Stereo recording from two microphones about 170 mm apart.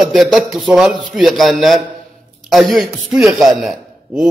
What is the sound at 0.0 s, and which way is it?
A man's voice, centre (ahead or behind).